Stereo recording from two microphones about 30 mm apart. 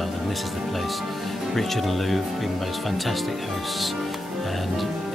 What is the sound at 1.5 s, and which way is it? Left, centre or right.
Speech, centre.